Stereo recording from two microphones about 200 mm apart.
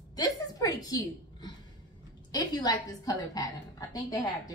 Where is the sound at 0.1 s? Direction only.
20° left (ahead or behind).